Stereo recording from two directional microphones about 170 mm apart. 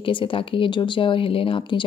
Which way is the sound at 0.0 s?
30° left (ahead or behind).